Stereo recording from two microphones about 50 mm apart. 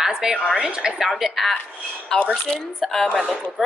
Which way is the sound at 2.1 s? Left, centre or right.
Centre.